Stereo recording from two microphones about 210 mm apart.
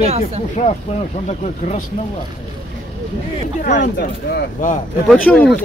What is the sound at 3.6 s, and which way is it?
Speech, 40° left (ahead or behind).